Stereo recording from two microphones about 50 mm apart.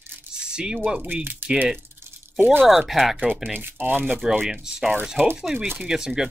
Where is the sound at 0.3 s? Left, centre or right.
Centre.